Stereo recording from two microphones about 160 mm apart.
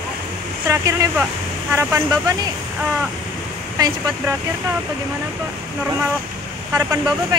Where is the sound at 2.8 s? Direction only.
10° right (ahead or behind).